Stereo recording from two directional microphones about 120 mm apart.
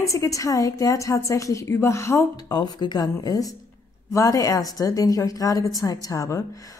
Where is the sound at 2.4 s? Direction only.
35° left (ahead or behind).